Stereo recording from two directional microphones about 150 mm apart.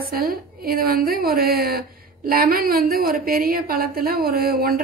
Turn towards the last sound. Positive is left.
turn(degrees=-90)